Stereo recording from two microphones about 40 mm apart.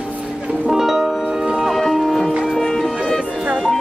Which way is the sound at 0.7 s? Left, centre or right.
Centre.